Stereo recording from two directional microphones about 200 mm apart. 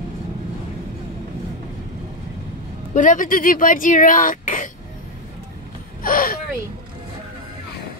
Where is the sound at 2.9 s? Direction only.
40° left (ahead or behind).